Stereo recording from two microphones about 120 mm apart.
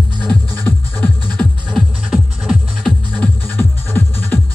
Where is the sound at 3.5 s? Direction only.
15° left (ahead or behind).